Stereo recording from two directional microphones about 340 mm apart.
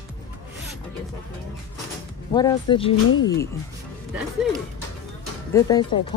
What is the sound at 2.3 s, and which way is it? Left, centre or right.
Speech, centre.